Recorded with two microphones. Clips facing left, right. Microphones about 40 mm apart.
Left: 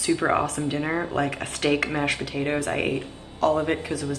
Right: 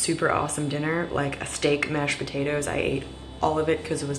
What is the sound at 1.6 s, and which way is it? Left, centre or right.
Speech, left.